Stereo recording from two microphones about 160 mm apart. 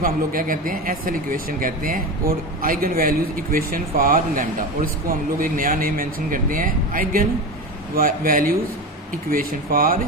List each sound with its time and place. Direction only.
0.0 s speech: 60° right (ahead or behind)